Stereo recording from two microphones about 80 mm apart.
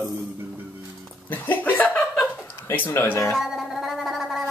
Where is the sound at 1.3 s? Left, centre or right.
Left.